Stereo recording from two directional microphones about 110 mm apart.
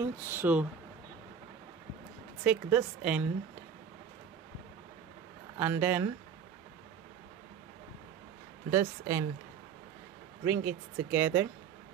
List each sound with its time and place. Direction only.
0.0 s speech: 20° right (ahead or behind)
2.4 s speech: 10° right (ahead or behind)
5.6 s speech: 20° right (ahead or behind)
8.7 s speech: 30° right (ahead or behind)
10.4 s speech: 20° right (ahead or behind)